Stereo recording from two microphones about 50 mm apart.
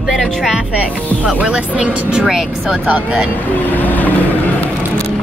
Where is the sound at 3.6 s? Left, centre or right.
Left.